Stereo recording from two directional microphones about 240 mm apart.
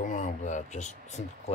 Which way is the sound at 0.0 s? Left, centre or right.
Left.